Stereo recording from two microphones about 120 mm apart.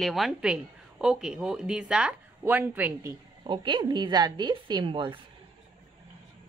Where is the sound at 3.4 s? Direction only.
40° right (ahead or behind).